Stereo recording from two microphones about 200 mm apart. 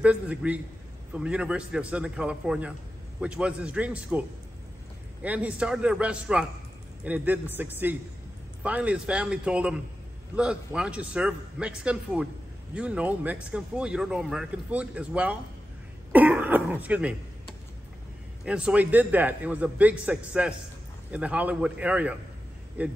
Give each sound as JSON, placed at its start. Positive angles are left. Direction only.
{"t": 0.0, "sound": "speech", "side_deg": -5}
{"t": 5.2, "sound": "a man's voice", "side_deg": -5}